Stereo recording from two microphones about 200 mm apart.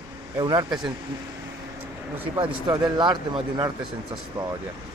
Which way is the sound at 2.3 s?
25° right (ahead or behind).